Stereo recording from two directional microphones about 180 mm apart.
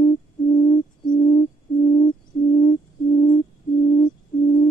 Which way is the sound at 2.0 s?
25° left (ahead or behind).